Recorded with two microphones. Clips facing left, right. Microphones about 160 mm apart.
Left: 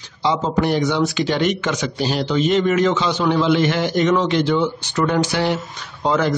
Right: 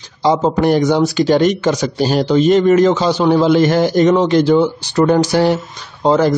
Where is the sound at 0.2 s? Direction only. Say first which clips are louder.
Right 6 dB; 45° right (ahead or behind).